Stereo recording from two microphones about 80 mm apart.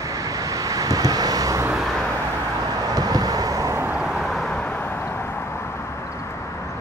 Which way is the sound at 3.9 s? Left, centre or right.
Centre.